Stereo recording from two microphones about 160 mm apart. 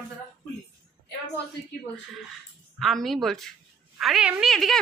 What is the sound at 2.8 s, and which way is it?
A woman's voice, centre (ahead or behind).